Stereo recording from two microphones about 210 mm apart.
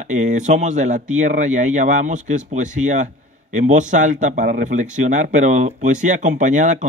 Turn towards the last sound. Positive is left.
turn(degrees=-35)  # may be behind; listen again after turning